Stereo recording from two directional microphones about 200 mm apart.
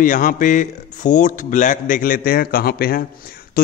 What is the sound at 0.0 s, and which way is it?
A man's voice, 40° left (ahead or behind).